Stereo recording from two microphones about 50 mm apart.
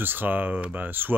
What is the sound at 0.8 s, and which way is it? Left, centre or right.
Speech, right.